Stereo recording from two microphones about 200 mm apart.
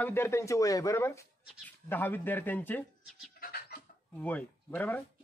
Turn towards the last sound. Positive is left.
turn(degrees=10)  # may be behind; listen again after turning